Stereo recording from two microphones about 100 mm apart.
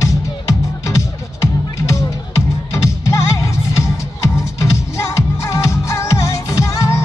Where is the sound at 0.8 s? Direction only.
30° left (ahead or behind).